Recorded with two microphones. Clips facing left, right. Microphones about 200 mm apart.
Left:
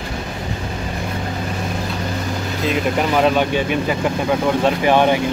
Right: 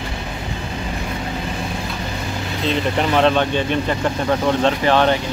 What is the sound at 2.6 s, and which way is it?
Speech, 5° left (ahead or behind).